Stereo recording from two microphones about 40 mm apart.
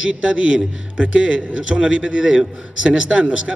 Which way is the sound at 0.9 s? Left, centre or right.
Right.